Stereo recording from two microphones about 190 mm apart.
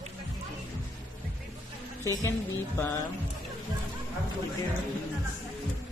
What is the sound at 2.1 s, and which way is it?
Speech, 15° left (ahead or behind).